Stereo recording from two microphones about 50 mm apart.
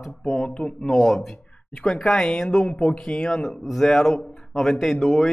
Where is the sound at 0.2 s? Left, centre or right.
Centre.